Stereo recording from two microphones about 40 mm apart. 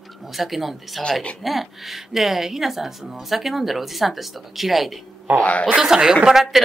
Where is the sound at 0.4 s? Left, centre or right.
Centre.